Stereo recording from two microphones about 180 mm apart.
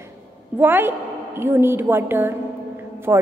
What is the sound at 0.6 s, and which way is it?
A woman's voice, 10° right (ahead or behind).